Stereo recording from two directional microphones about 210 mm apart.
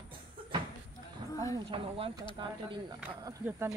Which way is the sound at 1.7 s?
25° right (ahead or behind).